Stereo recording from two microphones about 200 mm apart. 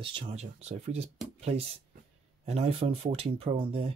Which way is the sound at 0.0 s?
30° right (ahead or behind).